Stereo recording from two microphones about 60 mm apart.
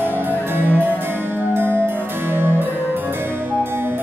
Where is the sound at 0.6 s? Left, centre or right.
Right.